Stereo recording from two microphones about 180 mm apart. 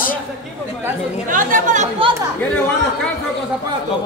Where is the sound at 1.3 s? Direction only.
45° right (ahead or behind).